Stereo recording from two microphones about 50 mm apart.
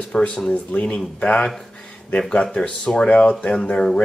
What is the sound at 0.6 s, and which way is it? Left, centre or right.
Speech, left.